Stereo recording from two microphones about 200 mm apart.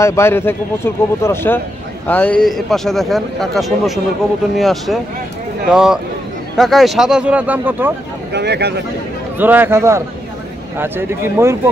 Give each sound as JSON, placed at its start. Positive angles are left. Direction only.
{"t": 0.0, "sound": "speech", "side_deg": 15}
{"t": 8.3, "sound": "speech", "side_deg": -55}
{"t": 9.4, "sound": "speech", "side_deg": -10}